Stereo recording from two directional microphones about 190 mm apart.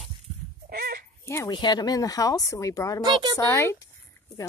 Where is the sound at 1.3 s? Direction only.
15° left (ahead or behind).